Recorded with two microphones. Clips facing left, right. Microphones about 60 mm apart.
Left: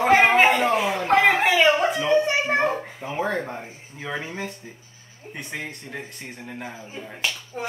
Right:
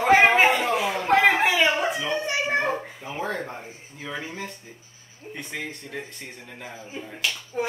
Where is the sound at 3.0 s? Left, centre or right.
Left.